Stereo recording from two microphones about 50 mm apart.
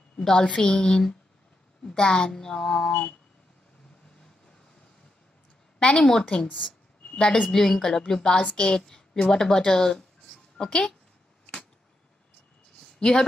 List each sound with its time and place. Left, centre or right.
0.2 s a woman's voice: centre
5.8 s a woman's voice: centre
7.4 s a woman's voice: centre
13.0 s a woman's voice: centre